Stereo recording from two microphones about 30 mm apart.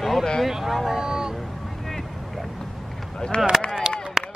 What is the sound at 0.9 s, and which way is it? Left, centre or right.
Vehicle, right.